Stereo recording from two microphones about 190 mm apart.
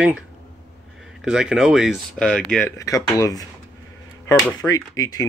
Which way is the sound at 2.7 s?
15° left (ahead or behind).